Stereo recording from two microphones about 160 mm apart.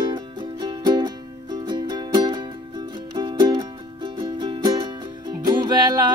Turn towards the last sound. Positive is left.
turn(degrees=-25)  # may be behind; listen again after turning